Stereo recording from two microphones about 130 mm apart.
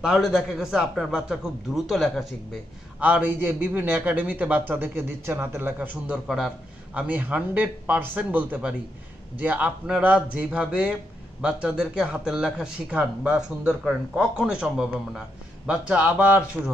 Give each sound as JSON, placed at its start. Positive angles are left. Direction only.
{"t": 0.0, "sound": "a man's voice", "side_deg": -5}
{"t": 6.2, "sound": "speech", "side_deg": -5}